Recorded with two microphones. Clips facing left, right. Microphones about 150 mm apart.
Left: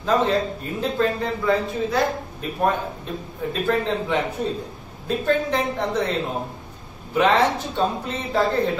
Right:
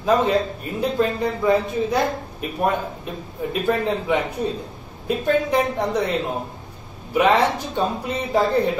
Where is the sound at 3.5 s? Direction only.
15° right (ahead or behind).